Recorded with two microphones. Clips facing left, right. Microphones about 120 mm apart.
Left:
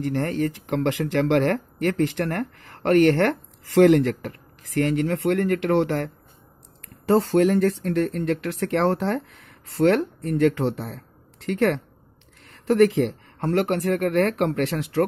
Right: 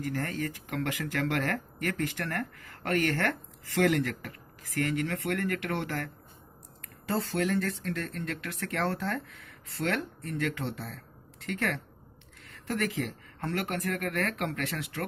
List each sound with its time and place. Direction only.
0.0 s speech: 25° left (ahead or behind)
7.3 s speech: 35° left (ahead or behind)